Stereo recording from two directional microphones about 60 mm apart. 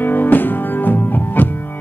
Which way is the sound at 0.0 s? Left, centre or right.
Left.